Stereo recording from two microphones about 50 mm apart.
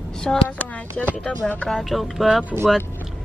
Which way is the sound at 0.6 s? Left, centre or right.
Left.